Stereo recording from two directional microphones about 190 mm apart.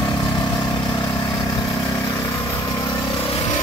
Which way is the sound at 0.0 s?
25° left (ahead or behind).